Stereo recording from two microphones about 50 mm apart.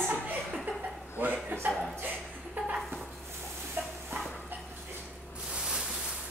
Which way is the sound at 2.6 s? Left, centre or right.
Right.